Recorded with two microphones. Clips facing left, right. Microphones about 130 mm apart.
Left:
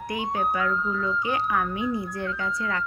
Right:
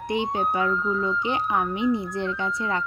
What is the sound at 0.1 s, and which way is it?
Speech, 25° right (ahead or behind).